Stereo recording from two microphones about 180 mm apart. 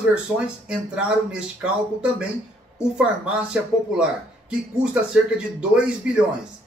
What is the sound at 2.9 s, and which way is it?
Speech, 5° right (ahead or behind).